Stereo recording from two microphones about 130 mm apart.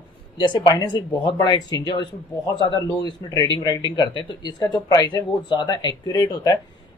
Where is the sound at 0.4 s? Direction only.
40° left (ahead or behind).